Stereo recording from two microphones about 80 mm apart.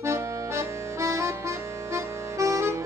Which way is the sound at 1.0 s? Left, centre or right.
Right.